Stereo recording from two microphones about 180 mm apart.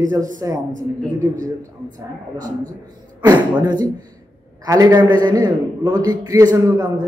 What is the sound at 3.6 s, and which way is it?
A man's voice, 25° right (ahead or behind).